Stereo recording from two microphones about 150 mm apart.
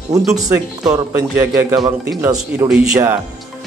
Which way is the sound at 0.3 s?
20° right (ahead or behind).